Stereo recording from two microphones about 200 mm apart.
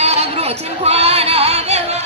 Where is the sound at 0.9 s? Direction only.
30° right (ahead or behind).